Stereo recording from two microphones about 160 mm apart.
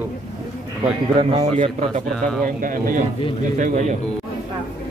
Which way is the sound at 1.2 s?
40° right (ahead or behind).